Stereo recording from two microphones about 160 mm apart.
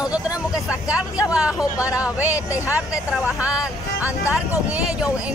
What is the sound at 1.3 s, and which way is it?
Speech, 5° right (ahead or behind).